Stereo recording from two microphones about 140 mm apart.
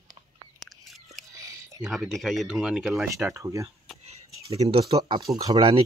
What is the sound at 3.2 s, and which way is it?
Speech, 20° right (ahead or behind).